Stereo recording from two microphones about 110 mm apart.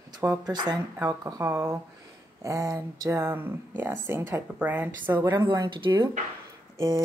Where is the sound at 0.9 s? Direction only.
25° right (ahead or behind).